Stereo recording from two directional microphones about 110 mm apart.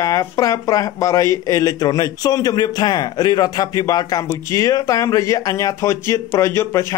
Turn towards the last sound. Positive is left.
turn(degrees=25)  # may be behind; listen again after turning